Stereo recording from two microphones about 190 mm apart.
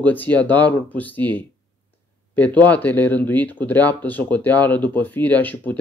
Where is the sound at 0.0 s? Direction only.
10° left (ahead or behind).